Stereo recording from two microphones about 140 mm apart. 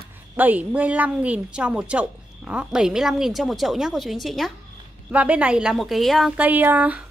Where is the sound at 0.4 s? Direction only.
10° right (ahead or behind).